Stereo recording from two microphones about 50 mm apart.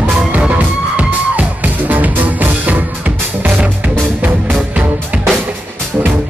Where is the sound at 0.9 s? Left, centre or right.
Right.